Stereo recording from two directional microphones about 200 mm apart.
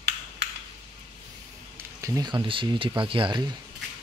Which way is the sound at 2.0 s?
20° right (ahead or behind).